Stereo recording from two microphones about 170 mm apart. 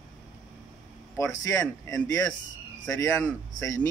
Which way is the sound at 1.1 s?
15° left (ahead or behind).